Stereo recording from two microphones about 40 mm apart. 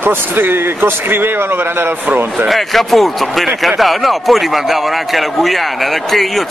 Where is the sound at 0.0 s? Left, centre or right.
Right.